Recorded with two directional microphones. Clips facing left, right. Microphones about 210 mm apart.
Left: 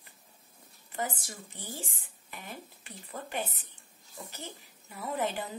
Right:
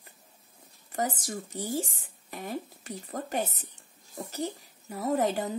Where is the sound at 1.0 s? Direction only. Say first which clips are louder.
Right 5 dB; 40° right (ahead or behind).